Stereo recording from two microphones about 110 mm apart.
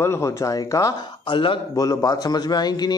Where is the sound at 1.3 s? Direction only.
50° left (ahead or behind).